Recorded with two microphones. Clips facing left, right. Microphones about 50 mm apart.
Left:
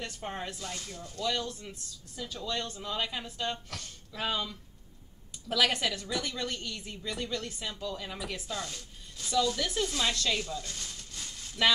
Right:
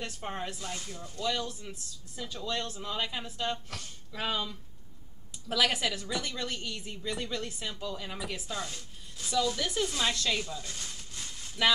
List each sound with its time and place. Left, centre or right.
0.0 s speech: centre